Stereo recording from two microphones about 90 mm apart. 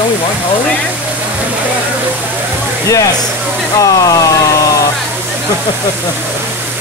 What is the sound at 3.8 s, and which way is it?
Speech, 40° left (ahead or behind).